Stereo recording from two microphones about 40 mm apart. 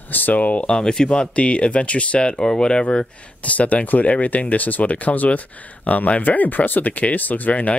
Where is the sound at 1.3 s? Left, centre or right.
Left.